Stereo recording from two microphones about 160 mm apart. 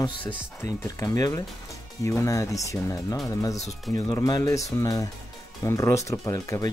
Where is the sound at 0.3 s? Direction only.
20° left (ahead or behind).